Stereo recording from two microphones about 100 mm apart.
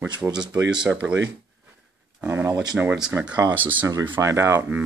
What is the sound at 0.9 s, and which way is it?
Speech, 15° right (ahead or behind).